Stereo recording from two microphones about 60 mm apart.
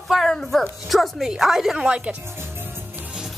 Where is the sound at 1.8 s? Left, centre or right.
Centre.